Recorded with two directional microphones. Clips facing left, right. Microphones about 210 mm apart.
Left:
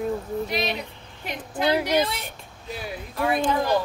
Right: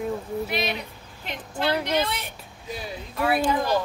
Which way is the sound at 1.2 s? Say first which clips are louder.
Left 2 dB; 15° left (ahead or behind).